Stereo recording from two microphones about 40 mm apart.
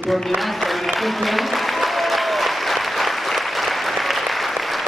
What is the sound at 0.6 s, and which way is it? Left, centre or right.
Applause, centre.